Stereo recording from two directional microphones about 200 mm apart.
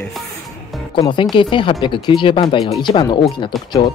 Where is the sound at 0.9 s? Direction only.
25° left (ahead or behind).